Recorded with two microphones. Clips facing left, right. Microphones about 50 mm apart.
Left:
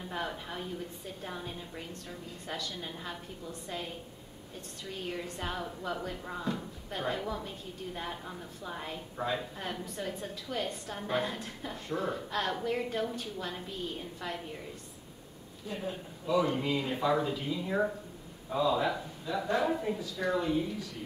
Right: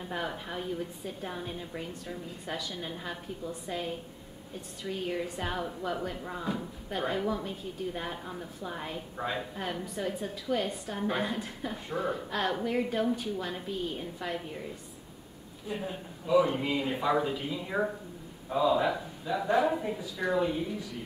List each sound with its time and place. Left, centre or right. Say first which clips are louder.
0.1 s a sound: right 2 dB; centre
1.2 s a woman's voice: right 2 dB; centre
15.7 s speech: right 2 dB; centre